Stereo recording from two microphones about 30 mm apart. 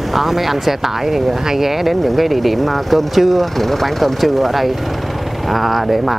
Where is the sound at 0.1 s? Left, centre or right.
Centre.